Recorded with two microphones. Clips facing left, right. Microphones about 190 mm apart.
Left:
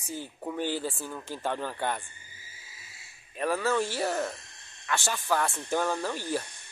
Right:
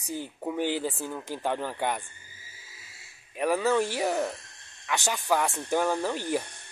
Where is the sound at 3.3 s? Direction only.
15° right (ahead or behind).